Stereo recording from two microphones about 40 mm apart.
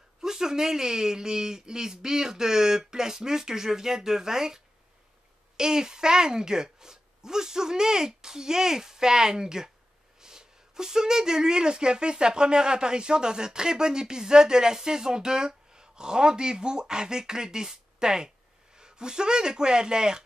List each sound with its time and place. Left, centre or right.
0.2 s speech: centre
5.6 s speech: centre